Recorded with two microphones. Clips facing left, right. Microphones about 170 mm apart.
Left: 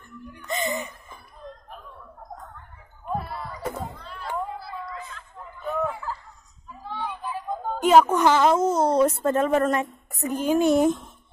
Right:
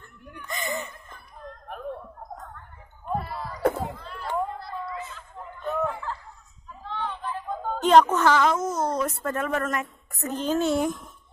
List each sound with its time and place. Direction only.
0.5 s chuckle: 20° left (ahead or behind)
1.4 s a sound: 50° right (ahead or behind)
3.1 s wail: centre (ahead or behind)
3.9 s a sound: centre (ahead or behind)
8.4 s speech: 30° left (ahead or behind)
10.2 s a woman's voice: 10° left (ahead or behind)